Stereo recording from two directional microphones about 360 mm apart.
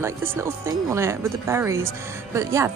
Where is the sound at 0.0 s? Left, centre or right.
Centre.